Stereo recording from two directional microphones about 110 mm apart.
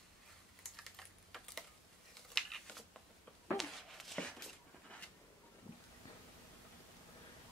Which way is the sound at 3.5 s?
Centre (ahead or behind).